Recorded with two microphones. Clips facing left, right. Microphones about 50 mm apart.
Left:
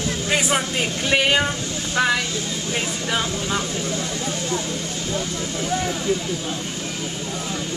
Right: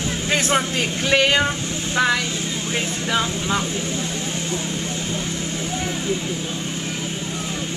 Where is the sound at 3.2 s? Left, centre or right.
Right.